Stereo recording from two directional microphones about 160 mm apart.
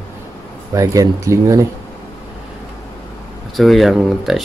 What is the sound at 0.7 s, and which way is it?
Speech, 20° right (ahead or behind).